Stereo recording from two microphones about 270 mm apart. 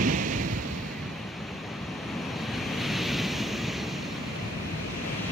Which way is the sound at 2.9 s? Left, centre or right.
Centre.